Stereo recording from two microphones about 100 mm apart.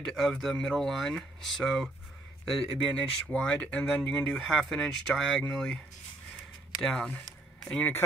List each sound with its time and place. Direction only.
0.0 s speech: 5° left (ahead or behind)
2.9 s speech: 10° left (ahead or behind)
6.8 s speech: 10° left (ahead or behind)